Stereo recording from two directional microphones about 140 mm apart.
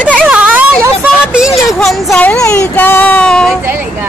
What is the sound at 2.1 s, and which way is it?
A child's voice, 10° left (ahead or behind).